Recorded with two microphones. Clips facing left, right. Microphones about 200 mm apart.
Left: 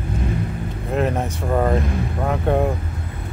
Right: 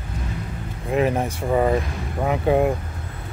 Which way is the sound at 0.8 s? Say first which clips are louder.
Right 1 dB; 5° right (ahead or behind).